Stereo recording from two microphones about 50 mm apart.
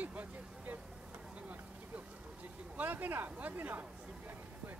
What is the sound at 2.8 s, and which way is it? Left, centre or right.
Speech, right.